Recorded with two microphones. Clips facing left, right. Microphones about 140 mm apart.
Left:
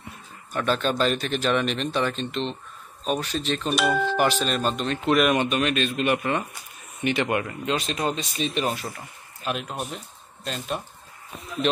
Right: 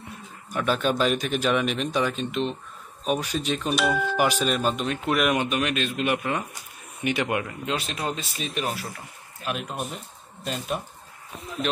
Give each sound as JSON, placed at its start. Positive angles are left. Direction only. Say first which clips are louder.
{"t": 0.5, "sound": "speech", "louder": "even", "side_deg": -10}
{"t": 3.9, "sound": "speech", "louder": "left 2 dB", "side_deg": 30}
{"t": 4.2, "sound": "speech", "louder": "even", "side_deg": -10}